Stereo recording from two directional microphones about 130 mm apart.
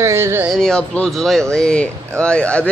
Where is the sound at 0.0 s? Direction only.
20° right (ahead or behind).